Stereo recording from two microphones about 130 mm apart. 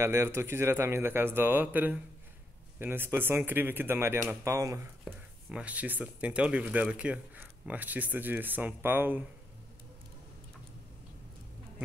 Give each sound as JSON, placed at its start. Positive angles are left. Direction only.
{"t": 0.0, "sound": "speech", "side_deg": -20}
{"t": 5.0, "sound": "speech", "side_deg": -10}